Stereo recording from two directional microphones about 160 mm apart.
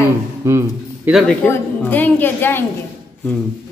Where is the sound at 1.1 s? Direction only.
Centre (ahead or behind).